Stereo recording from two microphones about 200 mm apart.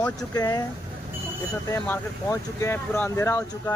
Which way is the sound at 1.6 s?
15° left (ahead or behind).